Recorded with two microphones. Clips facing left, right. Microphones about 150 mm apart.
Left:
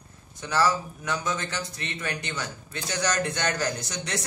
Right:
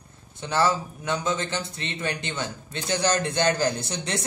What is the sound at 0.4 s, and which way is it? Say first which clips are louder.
A man's voice: right 1 dB; 25° right (ahead or behind).